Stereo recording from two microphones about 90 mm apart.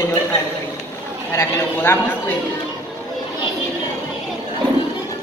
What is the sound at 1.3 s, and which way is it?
A woman's voice, 30° left (ahead or behind).